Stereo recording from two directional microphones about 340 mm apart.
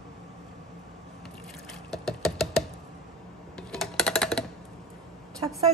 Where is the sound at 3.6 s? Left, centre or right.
Centre.